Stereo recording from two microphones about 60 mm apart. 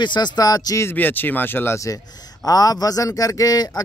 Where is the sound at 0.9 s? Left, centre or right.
Left.